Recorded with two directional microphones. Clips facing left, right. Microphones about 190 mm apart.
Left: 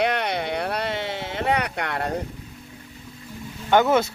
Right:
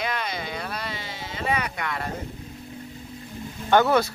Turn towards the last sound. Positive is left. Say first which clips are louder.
# left 1 dB
turn(degrees=20)  # may be behind; listen again after turning